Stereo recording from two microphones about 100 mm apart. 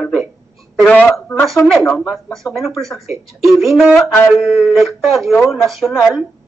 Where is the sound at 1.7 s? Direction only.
Centre (ahead or behind).